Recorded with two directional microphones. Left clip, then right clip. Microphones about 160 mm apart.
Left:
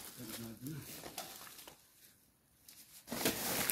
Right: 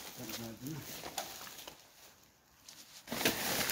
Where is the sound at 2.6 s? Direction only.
5° right (ahead or behind).